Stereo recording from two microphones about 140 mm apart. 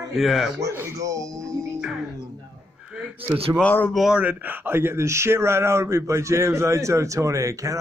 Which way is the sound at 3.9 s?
5° right (ahead or behind).